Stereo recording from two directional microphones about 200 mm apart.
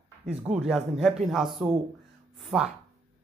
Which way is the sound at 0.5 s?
5° right (ahead or behind).